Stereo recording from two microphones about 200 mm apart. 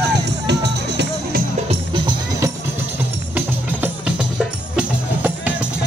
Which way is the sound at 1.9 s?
20° right (ahead or behind).